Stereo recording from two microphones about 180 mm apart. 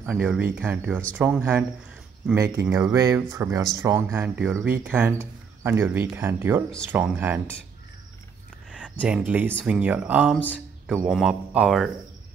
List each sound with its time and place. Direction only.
0.1 s speech: 5° right (ahead or behind)
8.7 s speech: 5° right (ahead or behind)